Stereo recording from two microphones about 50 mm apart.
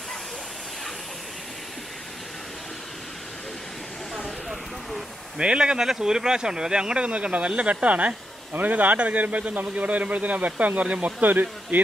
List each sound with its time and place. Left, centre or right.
5.4 s speech: centre; by 11.8 s right